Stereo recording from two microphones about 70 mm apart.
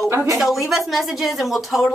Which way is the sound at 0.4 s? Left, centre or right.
Centre.